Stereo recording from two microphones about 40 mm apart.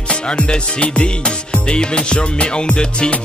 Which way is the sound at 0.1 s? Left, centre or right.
Left.